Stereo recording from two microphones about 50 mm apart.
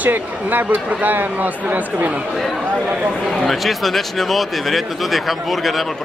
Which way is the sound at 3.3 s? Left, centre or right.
Centre.